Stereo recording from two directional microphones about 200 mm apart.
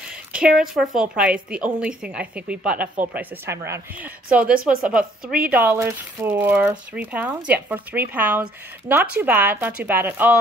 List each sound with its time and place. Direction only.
0.1 s speech: 5° right (ahead or behind)